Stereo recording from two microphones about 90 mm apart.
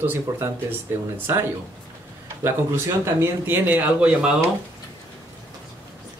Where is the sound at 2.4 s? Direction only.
30° right (ahead or behind).